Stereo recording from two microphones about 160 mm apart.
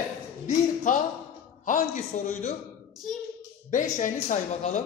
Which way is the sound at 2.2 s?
45° left (ahead or behind).